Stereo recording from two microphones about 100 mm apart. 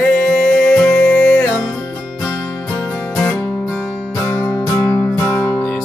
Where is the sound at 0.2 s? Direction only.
20° left (ahead or behind).